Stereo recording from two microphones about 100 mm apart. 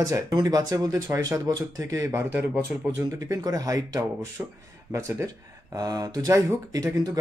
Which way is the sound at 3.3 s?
40° right (ahead or behind).